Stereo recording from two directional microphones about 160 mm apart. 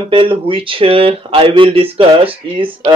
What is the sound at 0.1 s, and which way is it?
Speech, 35° right (ahead or behind).